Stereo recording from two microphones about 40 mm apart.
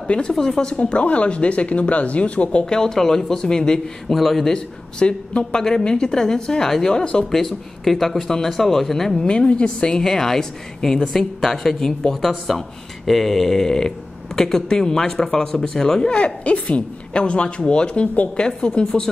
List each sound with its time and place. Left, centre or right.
0.3 s speech: centre; by 2.6 s left
2.6 s a woman's voice: centre
4.1 s a man's voice: centre
4.5 s a woman's voice: left
7.2 s a man's voice: centre
9.4 s a woman's voice: left